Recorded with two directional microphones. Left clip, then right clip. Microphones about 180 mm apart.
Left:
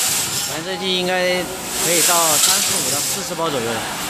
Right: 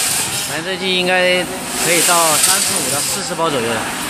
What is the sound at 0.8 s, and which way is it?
Speech, 5° left (ahead or behind).